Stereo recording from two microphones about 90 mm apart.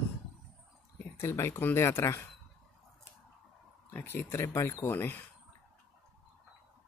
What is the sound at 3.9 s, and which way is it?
Speech, 25° left (ahead or behind).